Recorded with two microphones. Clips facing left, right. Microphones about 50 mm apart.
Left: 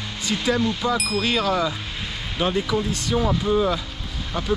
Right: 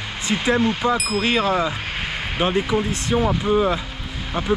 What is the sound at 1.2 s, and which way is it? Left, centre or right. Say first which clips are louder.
Speech: right 3 dB; right.